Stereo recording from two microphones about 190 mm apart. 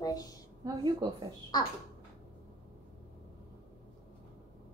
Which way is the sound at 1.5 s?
20° left (ahead or behind).